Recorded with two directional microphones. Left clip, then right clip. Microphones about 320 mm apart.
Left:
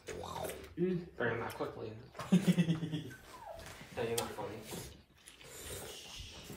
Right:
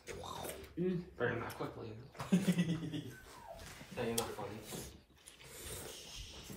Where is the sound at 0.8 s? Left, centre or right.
Centre.